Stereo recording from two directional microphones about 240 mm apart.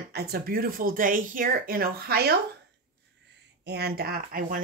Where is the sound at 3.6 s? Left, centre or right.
Right.